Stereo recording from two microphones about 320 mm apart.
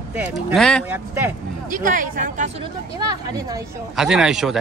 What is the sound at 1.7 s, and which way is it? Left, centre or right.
Speech, right.